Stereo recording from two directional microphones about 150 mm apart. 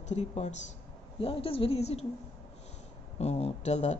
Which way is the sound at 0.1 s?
50° left (ahead or behind).